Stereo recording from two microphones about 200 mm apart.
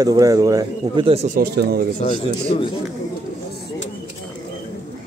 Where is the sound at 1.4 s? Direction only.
55° right (ahead or behind).